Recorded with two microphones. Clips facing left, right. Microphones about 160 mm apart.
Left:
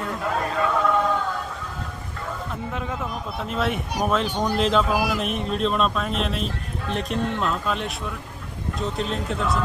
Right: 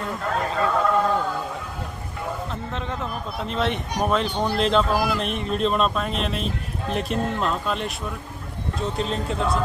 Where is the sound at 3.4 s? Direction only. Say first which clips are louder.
Right 1 dB; 5° left (ahead or behind).